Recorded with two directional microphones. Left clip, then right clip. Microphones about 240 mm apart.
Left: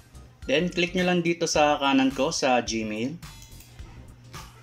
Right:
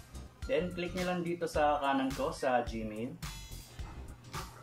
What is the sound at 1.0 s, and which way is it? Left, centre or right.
Speech, left.